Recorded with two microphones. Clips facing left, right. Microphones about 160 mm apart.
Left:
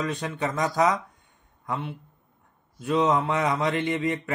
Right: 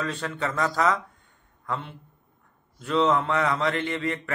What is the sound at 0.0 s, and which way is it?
A man's voice, 15° left (ahead or behind).